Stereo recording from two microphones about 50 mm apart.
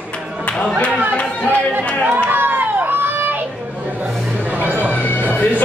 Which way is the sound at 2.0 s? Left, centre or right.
Right.